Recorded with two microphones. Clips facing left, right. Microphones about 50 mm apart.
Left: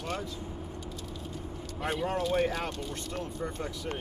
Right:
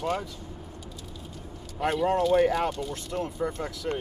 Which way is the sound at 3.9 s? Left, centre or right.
Right.